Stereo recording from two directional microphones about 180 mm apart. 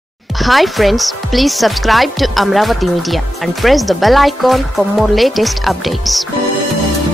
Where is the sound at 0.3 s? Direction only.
Centre (ahead or behind).